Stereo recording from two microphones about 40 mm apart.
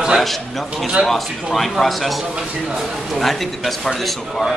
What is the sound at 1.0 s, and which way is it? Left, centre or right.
A man's voice, centre.